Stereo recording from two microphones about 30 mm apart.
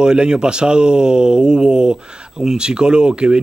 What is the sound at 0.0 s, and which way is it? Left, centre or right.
A man's voice, right.